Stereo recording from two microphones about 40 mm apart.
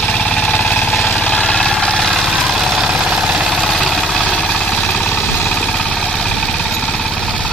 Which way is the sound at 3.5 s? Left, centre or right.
Centre.